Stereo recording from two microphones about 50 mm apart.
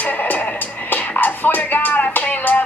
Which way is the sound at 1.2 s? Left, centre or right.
Left.